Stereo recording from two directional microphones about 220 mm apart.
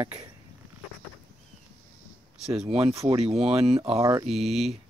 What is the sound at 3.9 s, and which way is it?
Speech, 15° right (ahead or behind).